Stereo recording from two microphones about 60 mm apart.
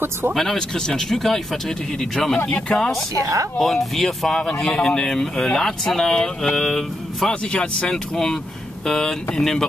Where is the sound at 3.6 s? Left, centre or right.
Centre.